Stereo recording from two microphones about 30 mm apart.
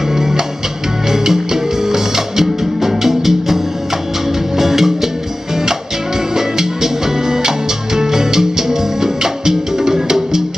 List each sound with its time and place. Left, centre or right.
0.1 s music: centre
6.3 s music: centre